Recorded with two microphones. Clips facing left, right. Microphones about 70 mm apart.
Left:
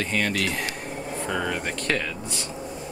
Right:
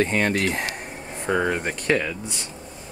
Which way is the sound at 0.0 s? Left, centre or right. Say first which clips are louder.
Right 4 dB; right.